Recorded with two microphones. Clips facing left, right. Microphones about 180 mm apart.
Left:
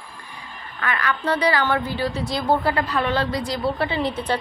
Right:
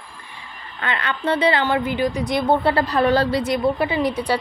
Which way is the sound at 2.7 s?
35° right (ahead or behind).